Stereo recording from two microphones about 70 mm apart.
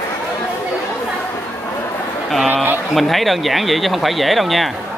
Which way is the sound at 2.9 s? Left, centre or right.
Centre.